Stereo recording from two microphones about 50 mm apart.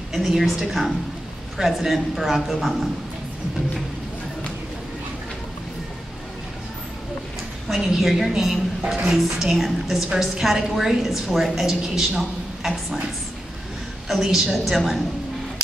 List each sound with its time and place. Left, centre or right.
0.1 s a woman's voice: centre
7.6 s a sound: centre
8.0 s a woman's voice: centre
14.0 s a woman's voice: centre